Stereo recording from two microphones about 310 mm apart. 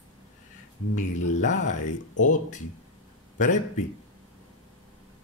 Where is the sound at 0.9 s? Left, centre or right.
Left.